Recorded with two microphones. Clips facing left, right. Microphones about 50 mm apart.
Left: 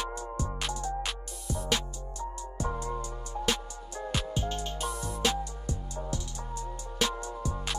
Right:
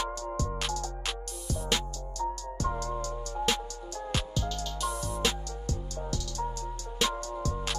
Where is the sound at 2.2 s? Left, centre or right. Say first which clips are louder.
Right 4 dB; left.